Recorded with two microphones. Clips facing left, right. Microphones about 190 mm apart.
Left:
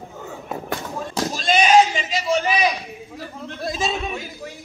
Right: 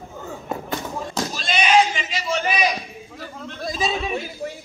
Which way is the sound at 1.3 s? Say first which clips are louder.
Left 3 dB; 45° left (ahead or behind).